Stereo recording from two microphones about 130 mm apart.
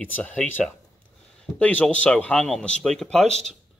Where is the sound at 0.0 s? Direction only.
10° left (ahead or behind).